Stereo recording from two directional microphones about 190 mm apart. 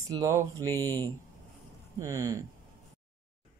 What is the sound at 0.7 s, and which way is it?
Speech, 10° left (ahead or behind).